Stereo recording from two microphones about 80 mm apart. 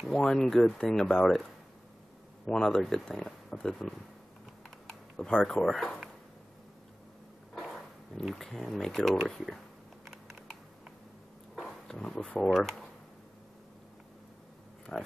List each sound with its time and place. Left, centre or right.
0.0 s speech: centre
7.5 s speech: centre
10.0 s typing: centre
11.5 s speech: centre
14.9 s speech: centre